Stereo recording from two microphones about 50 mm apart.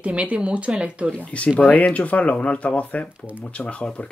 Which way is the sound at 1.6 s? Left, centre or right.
Left.